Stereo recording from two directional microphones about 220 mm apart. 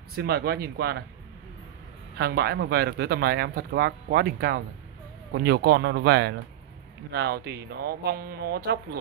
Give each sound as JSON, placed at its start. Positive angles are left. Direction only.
{"t": 0.1, "sound": "speech", "side_deg": -45}
{"t": 2.1, "sound": "speech", "side_deg": -45}